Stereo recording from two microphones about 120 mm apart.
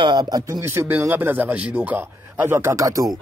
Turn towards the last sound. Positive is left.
turn(degrees=-30)  # may be behind; listen again after turning